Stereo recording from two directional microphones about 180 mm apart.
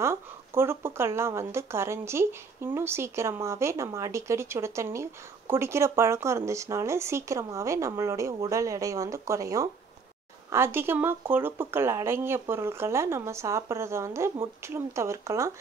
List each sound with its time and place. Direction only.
0.0 s speech: 15° right (ahead or behind)